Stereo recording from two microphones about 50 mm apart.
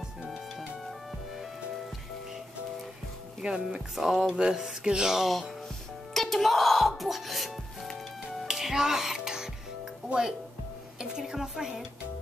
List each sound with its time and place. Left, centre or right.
3.3 s a woman's voice: centre
3.9 s a woman's voice: centre
6.1 s music: centre
8.5 s music: centre
10.0 s a woman's voice: centre